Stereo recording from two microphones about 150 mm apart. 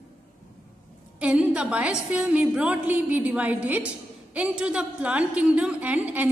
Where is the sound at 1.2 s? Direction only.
5° right (ahead or behind).